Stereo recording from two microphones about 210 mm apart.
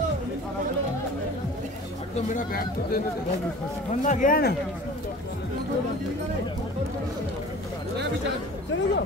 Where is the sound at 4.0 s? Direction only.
35° left (ahead or behind).